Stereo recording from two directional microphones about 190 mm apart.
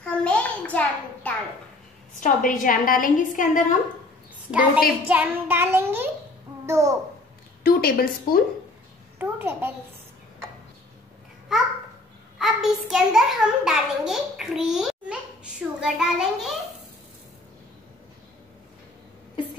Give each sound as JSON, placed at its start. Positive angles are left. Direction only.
{"t": 0.0, "sound": "a sound", "side_deg": 5}
{"t": 2.1, "sound": "a woman's voice", "side_deg": 45}
{"t": 4.5, "sound": "a woman's voice", "side_deg": -5}
{"t": 5.0, "sound": "child singing", "side_deg": -10}
{"t": 6.6, "sound": "a child's voice", "side_deg": -15}
{"t": 7.6, "sound": "a woman's voice", "side_deg": 50}
{"t": 9.2, "sound": "child singing", "side_deg": -10}
{"t": 12.4, "sound": "a child's voice", "side_deg": 0}